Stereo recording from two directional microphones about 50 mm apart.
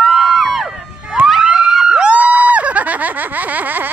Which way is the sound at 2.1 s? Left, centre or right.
Right.